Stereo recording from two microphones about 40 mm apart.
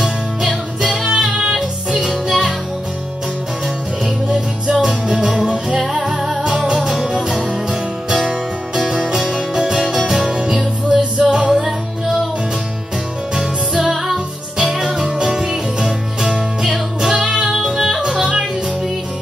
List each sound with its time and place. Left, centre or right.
0.4 s music: centre
4.7 s music: centre
6.4 s music: right
8.8 s music: centre
11.5 s music: centre
14.1 s music: centre